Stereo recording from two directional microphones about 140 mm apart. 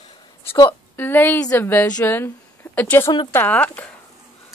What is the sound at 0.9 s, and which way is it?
Speech, 15° left (ahead or behind).